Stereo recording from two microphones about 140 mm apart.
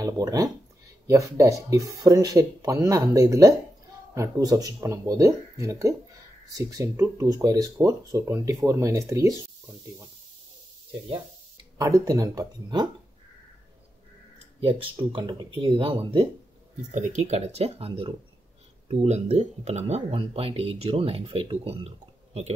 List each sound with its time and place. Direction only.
0.0 s speech: 25° right (ahead or behind)
11.8 s speech: 25° right (ahead or behind)
14.6 s speech: 40° right (ahead or behind)
16.9 s speech: 55° right (ahead or behind)
18.9 s speech: 55° right (ahead or behind)